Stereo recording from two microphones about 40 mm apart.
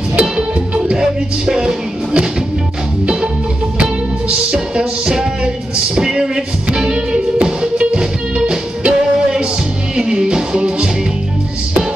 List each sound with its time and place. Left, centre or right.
0.2 s music: right
4.3 s music: right